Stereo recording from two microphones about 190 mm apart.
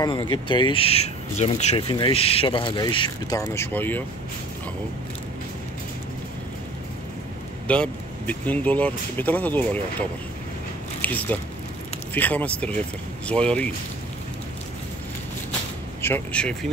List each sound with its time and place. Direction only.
0.0 s speech: 25° left (ahead or behind)
7.6 s speech: 5° left (ahead or behind)
11.0 s speech: 10° left (ahead or behind)
16.0 s speech: 10° left (ahead or behind)